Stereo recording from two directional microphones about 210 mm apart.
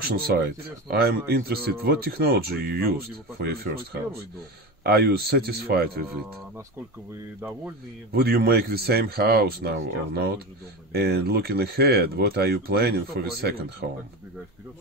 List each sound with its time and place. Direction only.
0.0 s speech: 50° right (ahead or behind)
4.8 s speech: 50° right (ahead or behind)
8.1 s speech: 50° right (ahead or behind)